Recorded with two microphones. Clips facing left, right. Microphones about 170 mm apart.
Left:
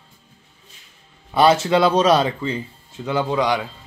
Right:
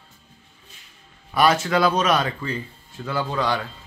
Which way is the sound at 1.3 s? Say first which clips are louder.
Left 4 dB; 25° left (ahead or behind).